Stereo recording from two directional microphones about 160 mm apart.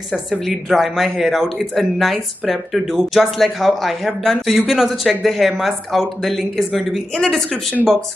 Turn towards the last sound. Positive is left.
turn(degrees=5)  # may be behind; listen again after turning